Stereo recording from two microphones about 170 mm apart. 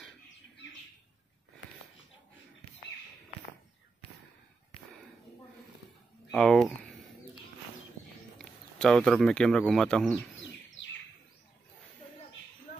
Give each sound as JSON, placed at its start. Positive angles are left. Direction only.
{"t": 6.3, "sound": "speech", "side_deg": 0}
{"t": 8.4, "sound": "speech", "side_deg": 5}
{"t": 10.3, "sound": "bird", "side_deg": 90}